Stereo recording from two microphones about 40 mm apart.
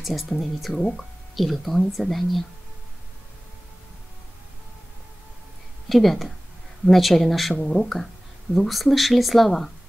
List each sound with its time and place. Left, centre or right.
0.0 s speech: centre
5.9 s speech: centre
7.5 s speech: centre